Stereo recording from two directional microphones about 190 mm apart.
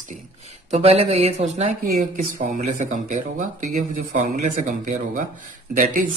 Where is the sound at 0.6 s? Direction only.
35° right (ahead or behind).